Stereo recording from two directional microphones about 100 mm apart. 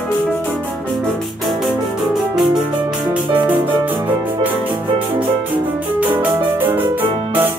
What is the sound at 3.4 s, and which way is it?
Music, 15° right (ahead or behind).